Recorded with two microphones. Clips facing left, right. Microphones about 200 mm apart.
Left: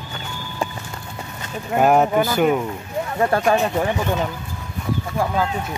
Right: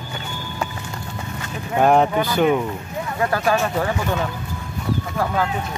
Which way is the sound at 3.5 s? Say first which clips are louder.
Left 2 dB; 15° left (ahead or behind).